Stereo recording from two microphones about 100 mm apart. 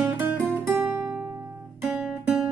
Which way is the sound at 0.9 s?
15° right (ahead or behind).